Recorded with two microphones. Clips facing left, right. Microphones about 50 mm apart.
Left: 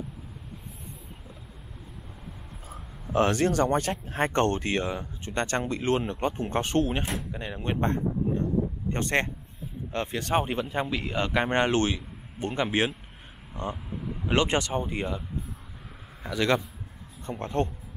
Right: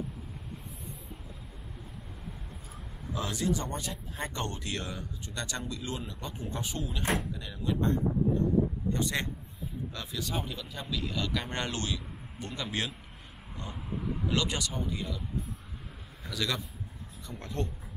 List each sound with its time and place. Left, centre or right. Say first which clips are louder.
3.1 s speech: left 8 dB; left
4.6 s speech: left 8 dB; left
7.3 s speech: left 3 dB; left
14.2 s speech: left 8 dB; left
16.2 s speech: left 9 dB; left